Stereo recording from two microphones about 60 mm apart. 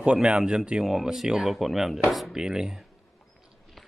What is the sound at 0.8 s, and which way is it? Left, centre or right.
A man's voice, centre.